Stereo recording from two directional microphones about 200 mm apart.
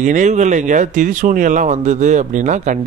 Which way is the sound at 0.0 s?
40° right (ahead or behind).